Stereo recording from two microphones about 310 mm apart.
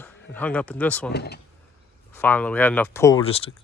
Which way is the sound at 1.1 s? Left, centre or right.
Left.